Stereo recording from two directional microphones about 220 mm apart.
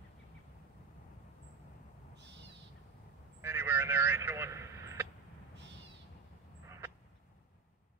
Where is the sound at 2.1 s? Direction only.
50° right (ahead or behind).